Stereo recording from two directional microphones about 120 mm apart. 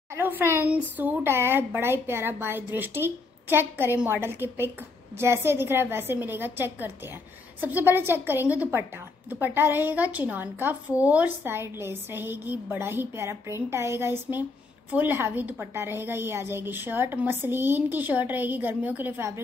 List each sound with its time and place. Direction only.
0.1 s a woman's voice: 20° right (ahead or behind)